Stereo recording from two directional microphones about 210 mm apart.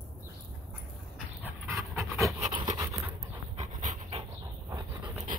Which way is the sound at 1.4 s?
10° right (ahead or behind).